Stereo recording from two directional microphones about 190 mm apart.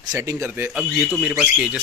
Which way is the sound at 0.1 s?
15° right (ahead or behind).